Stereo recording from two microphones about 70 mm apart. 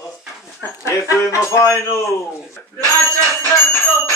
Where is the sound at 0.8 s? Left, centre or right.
Left.